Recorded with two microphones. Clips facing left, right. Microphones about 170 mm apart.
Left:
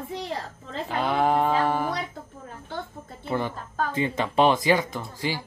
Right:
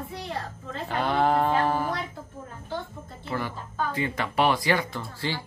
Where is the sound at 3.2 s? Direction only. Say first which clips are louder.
Left 4 dB; 25° left (ahead or behind).